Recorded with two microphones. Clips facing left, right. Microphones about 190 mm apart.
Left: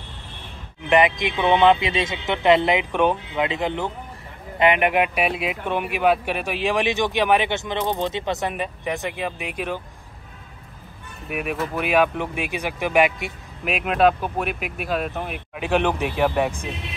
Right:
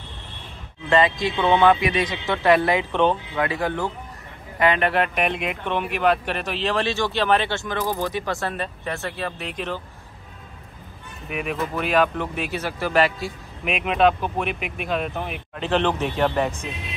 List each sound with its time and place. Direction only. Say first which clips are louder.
0.8 s speech: left 1 dB; 20° left (ahead or behind)
11.2 s speech: left 1 dB; 5° left (ahead or behind)
13.7 s speech: left 1 dB; centre (ahead or behind)